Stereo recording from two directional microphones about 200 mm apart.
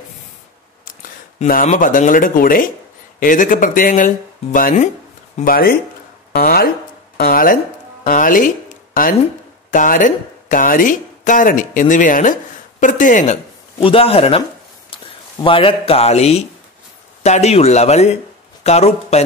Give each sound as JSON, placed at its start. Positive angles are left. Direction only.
{"t": 1.4, "sound": "speech", "side_deg": 40}
{"t": 9.7, "sound": "speech", "side_deg": 40}
{"t": 13.7, "sound": "speech", "side_deg": 30}
{"t": 15.4, "sound": "speech", "side_deg": 25}